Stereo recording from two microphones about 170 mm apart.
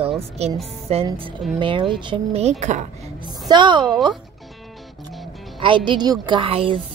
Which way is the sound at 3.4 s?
25° right (ahead or behind).